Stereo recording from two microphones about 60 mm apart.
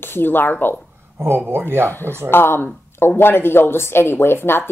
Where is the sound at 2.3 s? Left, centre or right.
Left.